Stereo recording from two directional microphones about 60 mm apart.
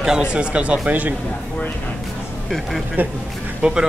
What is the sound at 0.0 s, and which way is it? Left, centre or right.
Speech, centre.